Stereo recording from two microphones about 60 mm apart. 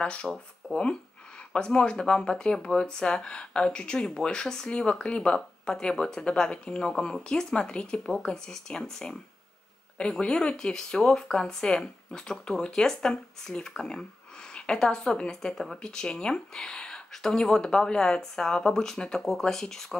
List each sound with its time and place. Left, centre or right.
0.0 s speech: centre
0.6 s a sound: centre
1.5 s speech: centre